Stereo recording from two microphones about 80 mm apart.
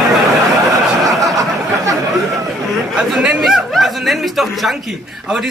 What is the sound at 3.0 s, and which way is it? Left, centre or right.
Speech, centre.